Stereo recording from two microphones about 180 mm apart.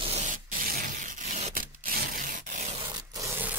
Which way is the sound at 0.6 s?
50° right (ahead or behind).